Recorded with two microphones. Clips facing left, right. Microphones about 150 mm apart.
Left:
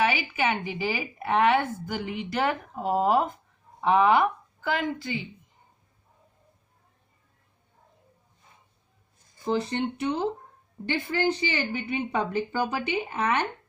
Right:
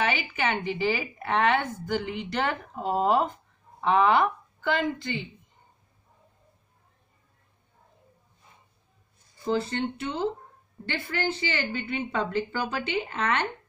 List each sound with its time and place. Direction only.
0.0 s a woman's voice: 5° left (ahead or behind)
9.5 s a woman's voice: 20° left (ahead or behind)